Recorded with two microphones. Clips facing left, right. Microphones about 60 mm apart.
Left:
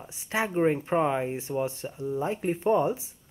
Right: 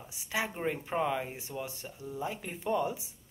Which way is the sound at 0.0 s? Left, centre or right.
Left.